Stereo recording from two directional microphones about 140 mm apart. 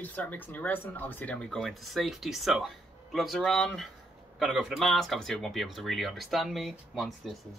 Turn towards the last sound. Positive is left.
turn(degrees=0)  # may be behind; listen again after turning